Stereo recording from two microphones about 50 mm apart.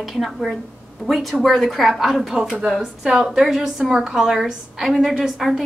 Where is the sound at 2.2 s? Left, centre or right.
Centre.